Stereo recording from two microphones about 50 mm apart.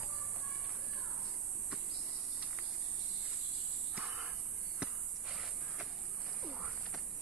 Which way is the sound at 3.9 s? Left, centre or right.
Right.